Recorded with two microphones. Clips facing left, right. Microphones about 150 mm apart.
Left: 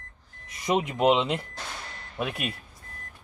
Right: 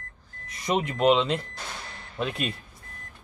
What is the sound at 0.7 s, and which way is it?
Speech, 15° left (ahead or behind).